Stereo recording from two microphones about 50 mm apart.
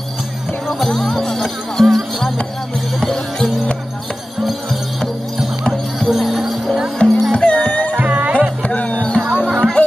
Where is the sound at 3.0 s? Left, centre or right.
Centre.